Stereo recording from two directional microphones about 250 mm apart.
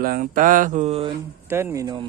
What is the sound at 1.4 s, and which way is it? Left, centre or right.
Speech, centre.